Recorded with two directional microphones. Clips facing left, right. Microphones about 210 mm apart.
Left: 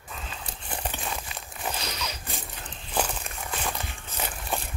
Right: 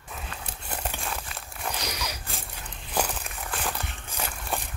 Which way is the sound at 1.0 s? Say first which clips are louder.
Even; centre (ahead or behind).